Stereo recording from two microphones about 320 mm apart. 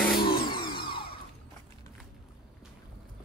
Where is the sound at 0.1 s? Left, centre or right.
Left.